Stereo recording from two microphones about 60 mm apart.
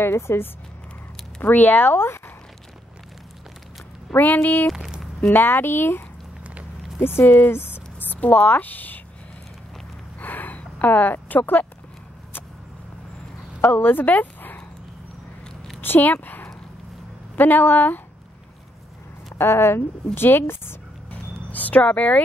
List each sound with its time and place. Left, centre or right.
0.0 s speech: left
1.4 s speech: left
2.0 s speech: left
4.1 s speech: left
4.7 s speech: centre
5.3 s speech: left
10.1 s a sound: left
13.6 s speech: left
15.8 s speech: left
19.3 s speech: left
20.2 s a sound: left
21.5 s speech: left